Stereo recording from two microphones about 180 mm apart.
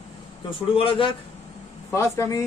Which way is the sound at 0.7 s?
30° left (ahead or behind).